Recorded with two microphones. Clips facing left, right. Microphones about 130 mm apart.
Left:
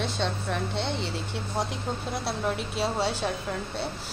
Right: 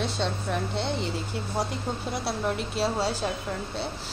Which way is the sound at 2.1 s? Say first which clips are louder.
Right 1 dB; centre (ahead or behind).